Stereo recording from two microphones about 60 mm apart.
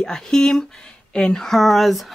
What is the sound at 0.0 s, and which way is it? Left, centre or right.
Speech, centre.